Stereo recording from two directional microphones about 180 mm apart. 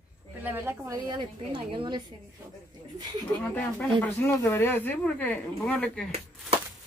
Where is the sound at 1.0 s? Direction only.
25° right (ahead or behind).